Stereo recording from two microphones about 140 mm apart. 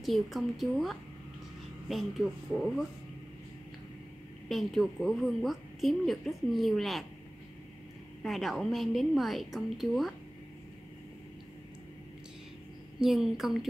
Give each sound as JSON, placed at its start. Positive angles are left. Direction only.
{"t": 0.0, "sound": "a woman's voice", "side_deg": 0}
{"t": 4.5, "sound": "a woman's voice", "side_deg": 0}
{"t": 8.2, "sound": "a woman's voice", "side_deg": 0}
{"t": 13.0, "sound": "a woman's voice", "side_deg": 0}